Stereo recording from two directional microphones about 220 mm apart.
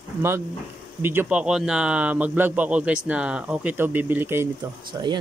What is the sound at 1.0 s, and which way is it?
Speech, 5° right (ahead or behind).